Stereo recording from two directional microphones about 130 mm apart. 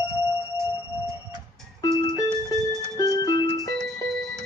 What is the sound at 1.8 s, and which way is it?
Music, 30° left (ahead or behind).